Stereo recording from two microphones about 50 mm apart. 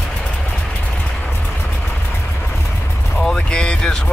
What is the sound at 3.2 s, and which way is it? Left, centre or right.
Music, centre.